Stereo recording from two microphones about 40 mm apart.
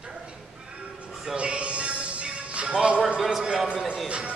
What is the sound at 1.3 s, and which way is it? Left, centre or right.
Music, right.